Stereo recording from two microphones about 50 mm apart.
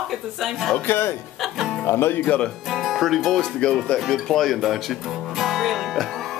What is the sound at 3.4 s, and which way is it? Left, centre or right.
Speech, centre.